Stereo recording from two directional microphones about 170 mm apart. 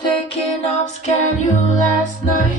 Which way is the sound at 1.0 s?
45° left (ahead or behind).